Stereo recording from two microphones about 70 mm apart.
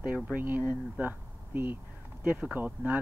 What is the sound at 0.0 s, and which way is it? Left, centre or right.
Speech, right.